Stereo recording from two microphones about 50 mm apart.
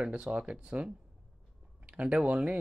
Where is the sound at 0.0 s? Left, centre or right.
Right.